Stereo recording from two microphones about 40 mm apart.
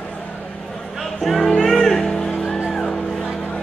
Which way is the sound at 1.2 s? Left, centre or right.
Centre.